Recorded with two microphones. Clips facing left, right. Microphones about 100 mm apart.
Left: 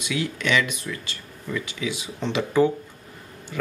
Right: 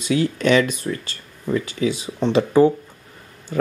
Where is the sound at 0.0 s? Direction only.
40° right (ahead or behind).